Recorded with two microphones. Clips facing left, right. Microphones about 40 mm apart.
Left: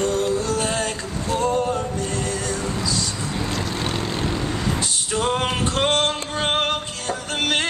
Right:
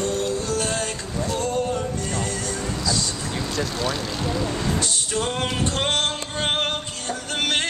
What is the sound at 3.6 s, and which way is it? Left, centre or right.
Vehicle, left.